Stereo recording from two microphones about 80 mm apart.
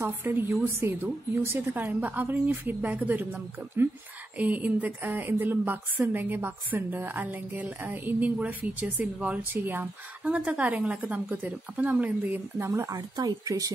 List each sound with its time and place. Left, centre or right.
0.2 s a woman's voice: right
12.5 s speech: right
12.9 s speech: right